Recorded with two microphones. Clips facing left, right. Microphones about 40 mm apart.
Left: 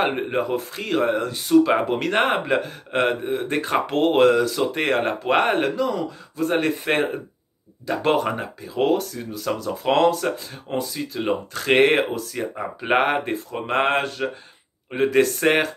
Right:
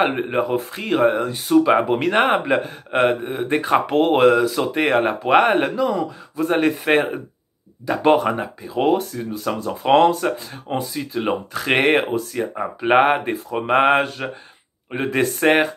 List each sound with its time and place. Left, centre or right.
0.0 s speech: centre
0.6 s speech: right
9.1 s speech: centre
12.3 s speech: centre
12.9 s speech: right
15.1 s speech: centre